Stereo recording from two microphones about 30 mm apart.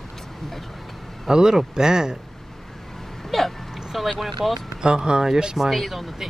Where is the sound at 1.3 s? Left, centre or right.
Right.